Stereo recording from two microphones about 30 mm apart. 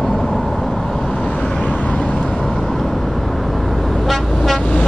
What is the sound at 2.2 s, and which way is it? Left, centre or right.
Vehicle, centre.